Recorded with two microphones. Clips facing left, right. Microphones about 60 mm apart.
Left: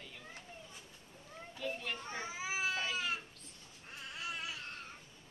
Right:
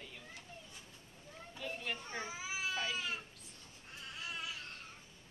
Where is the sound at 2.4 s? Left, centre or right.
Left.